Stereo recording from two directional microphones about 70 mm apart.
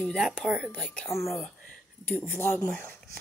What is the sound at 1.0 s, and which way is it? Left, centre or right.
Speech, centre.